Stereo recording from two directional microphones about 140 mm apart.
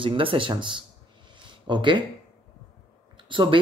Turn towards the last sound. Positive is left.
turn(degrees=-35)  # may be behind; listen again after turning